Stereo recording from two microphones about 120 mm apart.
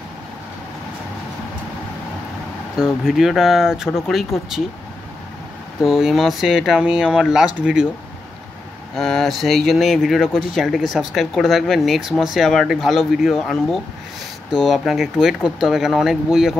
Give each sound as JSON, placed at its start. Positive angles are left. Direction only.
{"t": 2.8, "sound": "speech", "side_deg": -5}
{"t": 5.8, "sound": "speech", "side_deg": -5}
{"t": 8.9, "sound": "speech", "side_deg": 0}